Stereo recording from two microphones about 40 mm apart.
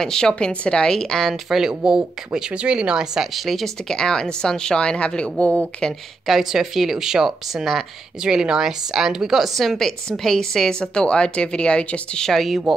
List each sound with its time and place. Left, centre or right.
0.0 s speech: centre
1.9 s speech: centre
3.3 s a woman's voice: centre
3.9 s speech: centre
6.2 s a woman's voice: centre
10.8 s speech: left
12.3 s a woman's voice: centre